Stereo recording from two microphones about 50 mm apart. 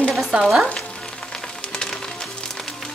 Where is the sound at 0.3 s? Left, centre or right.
Centre.